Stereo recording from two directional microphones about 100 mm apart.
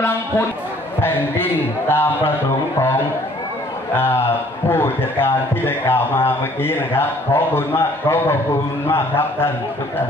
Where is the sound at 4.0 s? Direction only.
20° left (ahead or behind).